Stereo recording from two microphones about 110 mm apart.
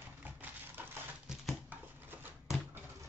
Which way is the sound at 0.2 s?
15° right (ahead or behind).